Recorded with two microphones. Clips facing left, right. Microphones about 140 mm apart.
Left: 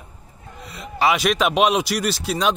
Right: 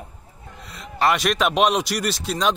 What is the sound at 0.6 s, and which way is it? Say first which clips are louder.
Speech: left 1 dB; centre (ahead or behind).